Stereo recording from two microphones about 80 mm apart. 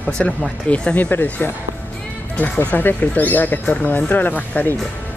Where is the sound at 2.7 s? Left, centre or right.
Left.